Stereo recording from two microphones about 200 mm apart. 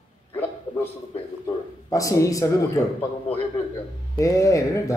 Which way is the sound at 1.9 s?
15° left (ahead or behind).